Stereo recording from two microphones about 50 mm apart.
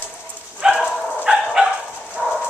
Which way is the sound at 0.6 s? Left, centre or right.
Centre.